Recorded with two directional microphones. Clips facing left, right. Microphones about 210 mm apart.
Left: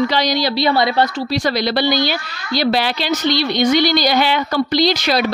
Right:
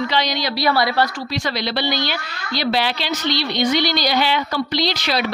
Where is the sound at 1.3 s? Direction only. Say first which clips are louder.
Left 5 dB; 40° left (ahead or behind).